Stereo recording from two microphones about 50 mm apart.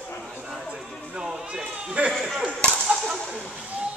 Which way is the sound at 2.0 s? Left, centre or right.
Right.